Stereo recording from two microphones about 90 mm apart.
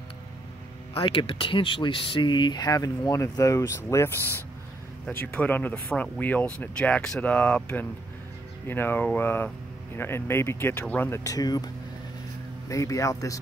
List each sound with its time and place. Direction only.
1.0 s speech: 70° left (ahead or behind); by 11.1 s 20° left (ahead or behind)
11.1 s speech: 40° left (ahead or behind)